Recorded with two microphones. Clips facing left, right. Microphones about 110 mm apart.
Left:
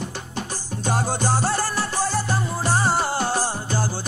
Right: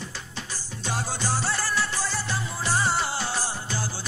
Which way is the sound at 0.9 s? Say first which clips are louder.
Left 6 dB; 50° left (ahead or behind).